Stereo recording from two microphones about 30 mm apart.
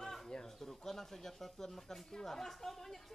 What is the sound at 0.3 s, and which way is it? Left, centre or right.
Bird, centre.